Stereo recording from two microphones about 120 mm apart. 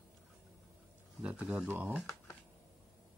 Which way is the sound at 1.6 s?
10° right (ahead or behind).